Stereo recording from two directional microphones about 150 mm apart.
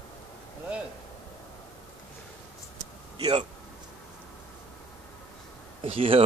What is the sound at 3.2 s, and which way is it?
Speech, 35° right (ahead or behind).